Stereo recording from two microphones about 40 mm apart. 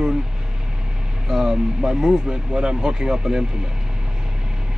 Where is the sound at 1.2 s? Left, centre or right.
Centre.